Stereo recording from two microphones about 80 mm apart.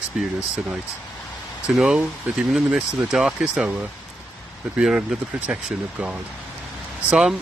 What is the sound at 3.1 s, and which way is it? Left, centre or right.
Speech, centre.